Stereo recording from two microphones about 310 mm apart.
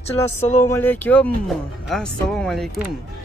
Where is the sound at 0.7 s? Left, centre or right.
Centre.